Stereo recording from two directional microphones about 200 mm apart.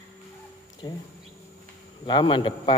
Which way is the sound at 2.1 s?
25° left (ahead or behind).